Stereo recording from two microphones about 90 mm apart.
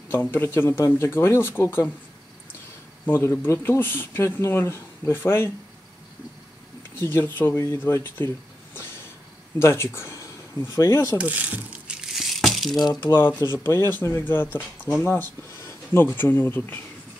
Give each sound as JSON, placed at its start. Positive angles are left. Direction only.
{"t": 0.1, "sound": "speech", "side_deg": 25}
{"t": 3.1, "sound": "speech", "side_deg": 30}
{"t": 7.0, "sound": "speech", "side_deg": 30}
{"t": 9.6, "sound": "speech", "side_deg": 30}
{"t": 11.1, "sound": "speech", "side_deg": -15}
{"t": 12.0, "sound": "crumpling", "side_deg": 0}
{"t": 13.0, "sound": "speech", "side_deg": 25}